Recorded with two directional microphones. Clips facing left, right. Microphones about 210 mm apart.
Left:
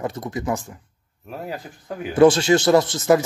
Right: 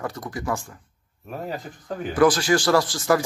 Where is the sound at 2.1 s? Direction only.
25° left (ahead or behind).